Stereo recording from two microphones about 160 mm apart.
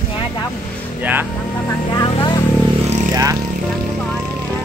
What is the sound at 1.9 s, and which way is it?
Speech, 30° left (ahead or behind).